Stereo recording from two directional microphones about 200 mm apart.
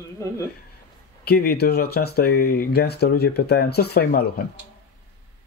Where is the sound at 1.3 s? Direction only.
50° left (ahead or behind).